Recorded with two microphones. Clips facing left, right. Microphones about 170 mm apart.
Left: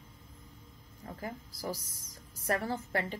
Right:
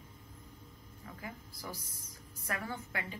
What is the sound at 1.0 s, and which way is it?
A woman's voice, 40° left (ahead or behind).